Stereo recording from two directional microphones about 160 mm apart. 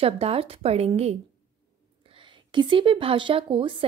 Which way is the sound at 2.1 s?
30° right (ahead or behind).